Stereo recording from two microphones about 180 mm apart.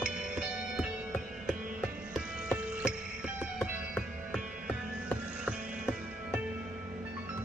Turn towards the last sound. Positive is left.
turn(degrees=-5)  # may be behind; listen again after turning